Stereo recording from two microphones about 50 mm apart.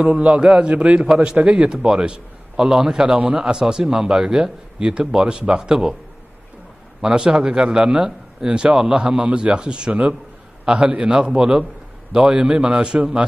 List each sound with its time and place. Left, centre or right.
0.0 s a man's voice: right
7.0 s a man's voice: centre
10.6 s a sound: centre
10.9 s a man's voice: centre